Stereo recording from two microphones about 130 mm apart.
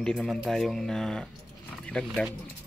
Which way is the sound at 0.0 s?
5° left (ahead or behind).